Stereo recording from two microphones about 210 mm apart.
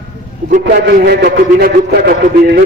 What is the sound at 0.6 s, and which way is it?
A man's voice, 45° right (ahead or behind).